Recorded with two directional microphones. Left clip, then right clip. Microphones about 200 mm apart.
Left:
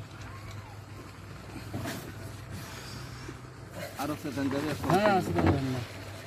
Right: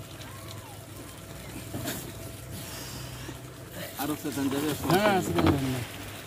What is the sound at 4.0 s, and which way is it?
Speech, centre (ahead or behind).